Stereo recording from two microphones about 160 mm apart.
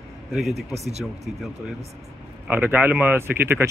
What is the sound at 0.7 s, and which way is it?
Speech, 40° right (ahead or behind).